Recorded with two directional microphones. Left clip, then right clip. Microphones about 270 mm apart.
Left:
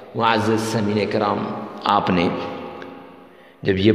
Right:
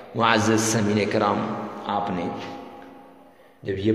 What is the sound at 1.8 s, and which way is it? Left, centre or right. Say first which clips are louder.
Speech: left 9 dB; left.